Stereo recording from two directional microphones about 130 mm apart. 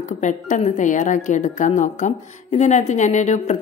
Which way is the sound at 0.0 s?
70° left (ahead or behind).